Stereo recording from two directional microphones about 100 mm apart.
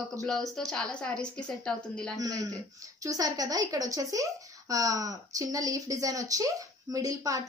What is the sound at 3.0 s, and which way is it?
Speech, 35° right (ahead or behind).